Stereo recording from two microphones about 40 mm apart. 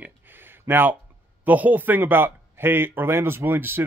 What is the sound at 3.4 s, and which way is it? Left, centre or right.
Speech, right.